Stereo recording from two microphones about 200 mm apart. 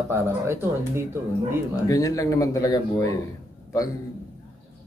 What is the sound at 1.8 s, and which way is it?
Speech, 15° left (ahead or behind).